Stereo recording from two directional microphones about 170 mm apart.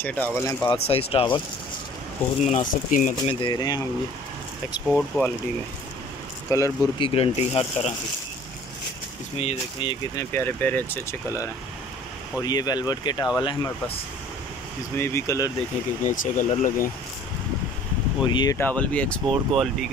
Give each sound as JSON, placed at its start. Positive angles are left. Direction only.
{"t": 0.0, "sound": "speech", "side_deg": 10}
{"t": 0.7, "sound": "speech", "side_deg": 35}
{"t": 2.4, "sound": "speech", "side_deg": 45}
{"t": 3.3, "sound": "speech", "side_deg": 30}
{"t": 4.8, "sound": "speech", "side_deg": 0}
{"t": 6.5, "sound": "speech", "side_deg": 20}
{"t": 7.0, "sound": "speech", "side_deg": 35}
{"t": 9.4, "sound": "speech", "side_deg": 35}
{"t": 10.1, "sound": "speech", "side_deg": 10}
{"t": 15.0, "sound": "speech", "side_deg": 15}
{"t": 16.0, "sound": "speech", "side_deg": 50}
{"t": 18.2, "sound": "speech", "side_deg": 25}
{"t": 18.6, "sound": "speech", "side_deg": 10}